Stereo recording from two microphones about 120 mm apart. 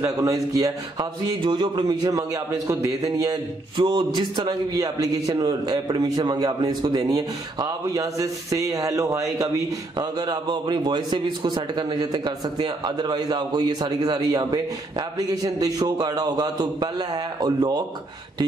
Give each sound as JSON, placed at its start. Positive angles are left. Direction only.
{"t": 0.2, "sound": "speech", "side_deg": -30}
{"t": 3.7, "sound": "a man's voice", "side_deg": -40}
{"t": 9.9, "sound": "a man's voice", "side_deg": -35}